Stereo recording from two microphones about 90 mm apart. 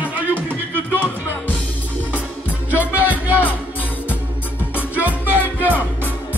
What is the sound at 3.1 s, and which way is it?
Music, 20° right (ahead or behind).